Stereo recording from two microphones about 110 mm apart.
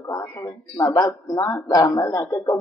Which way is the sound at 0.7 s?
35° left (ahead or behind).